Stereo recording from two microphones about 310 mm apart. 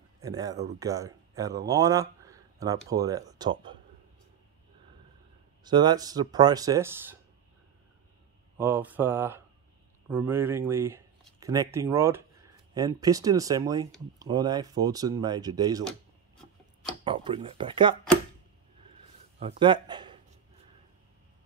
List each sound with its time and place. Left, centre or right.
0.2 s speech: centre
5.6 s speech: centre
8.5 s speech: centre
17.0 s speech: centre
19.4 s a man's voice: centre